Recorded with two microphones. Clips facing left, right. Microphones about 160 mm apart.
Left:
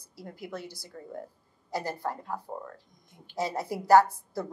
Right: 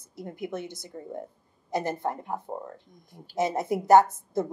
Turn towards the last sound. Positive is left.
turn(degrees=-20)  # may be behind; listen again after turning